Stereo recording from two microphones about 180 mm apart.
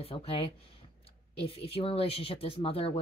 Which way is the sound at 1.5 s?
30° left (ahead or behind).